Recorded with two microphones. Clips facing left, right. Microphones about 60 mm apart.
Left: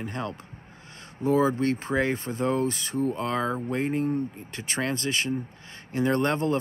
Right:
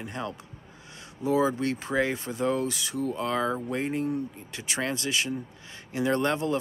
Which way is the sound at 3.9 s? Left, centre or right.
Left.